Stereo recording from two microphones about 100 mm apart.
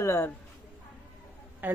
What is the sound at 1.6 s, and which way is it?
Speech, 20° right (ahead or behind).